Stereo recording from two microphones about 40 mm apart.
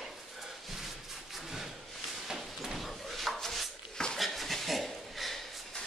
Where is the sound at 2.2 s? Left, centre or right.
Centre.